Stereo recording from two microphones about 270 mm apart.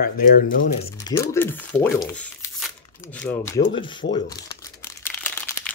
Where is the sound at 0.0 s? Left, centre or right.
Left.